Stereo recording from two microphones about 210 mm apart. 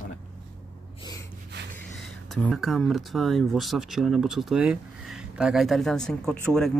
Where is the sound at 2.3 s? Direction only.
5° left (ahead or behind).